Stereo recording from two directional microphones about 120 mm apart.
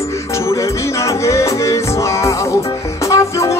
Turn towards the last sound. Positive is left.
turn(degrees=25)  # may be behind; listen again after turning